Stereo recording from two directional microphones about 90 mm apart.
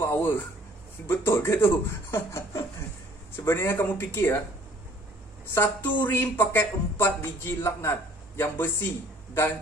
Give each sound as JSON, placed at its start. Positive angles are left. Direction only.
{"t": 0.0, "sound": "speech", "side_deg": 25}
{"t": 5.5, "sound": "speech", "side_deg": 25}